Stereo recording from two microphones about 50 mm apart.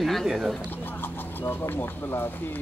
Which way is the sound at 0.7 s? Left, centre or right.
Left.